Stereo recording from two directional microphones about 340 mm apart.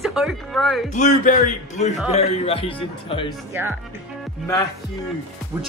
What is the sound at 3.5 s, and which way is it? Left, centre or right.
Speech, centre.